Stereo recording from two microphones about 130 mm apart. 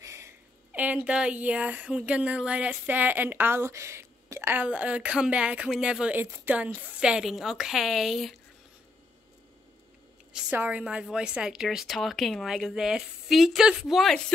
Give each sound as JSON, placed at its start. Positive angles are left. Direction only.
{"t": 0.0, "sound": "a sound", "side_deg": -20}
{"t": 0.7, "sound": "a woman's voice", "side_deg": -10}
{"t": 10.3, "sound": "a woman's voice", "side_deg": -15}